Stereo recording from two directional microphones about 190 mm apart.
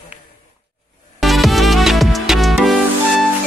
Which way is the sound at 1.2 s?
Centre (ahead or behind).